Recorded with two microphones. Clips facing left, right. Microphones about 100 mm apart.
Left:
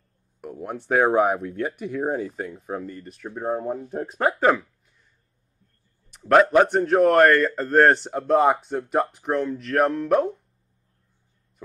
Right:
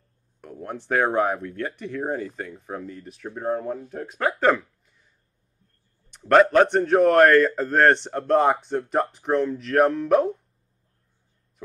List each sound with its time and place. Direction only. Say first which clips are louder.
0.4 s a man's voice: left 2 dB; 5° left (ahead or behind)
3.9 s speech: left 3 dB; 35° left (ahead or behind)
4.3 s speech: even; 5° left (ahead or behind)
6.0 s a man's voice: right 1 dB; centre (ahead or behind)